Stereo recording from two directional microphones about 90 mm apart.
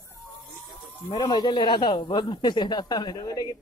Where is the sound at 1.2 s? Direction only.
50° left (ahead or behind).